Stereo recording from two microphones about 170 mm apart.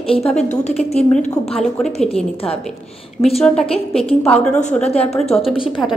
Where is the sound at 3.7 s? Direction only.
35° left (ahead or behind).